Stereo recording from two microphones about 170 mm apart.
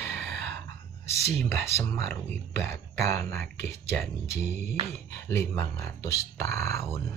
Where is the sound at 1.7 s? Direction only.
40° right (ahead or behind).